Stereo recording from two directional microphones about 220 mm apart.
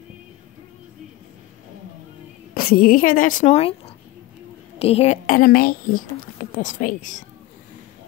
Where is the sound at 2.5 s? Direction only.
40° left (ahead or behind).